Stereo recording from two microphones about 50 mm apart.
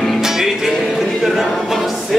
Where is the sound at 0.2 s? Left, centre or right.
Centre.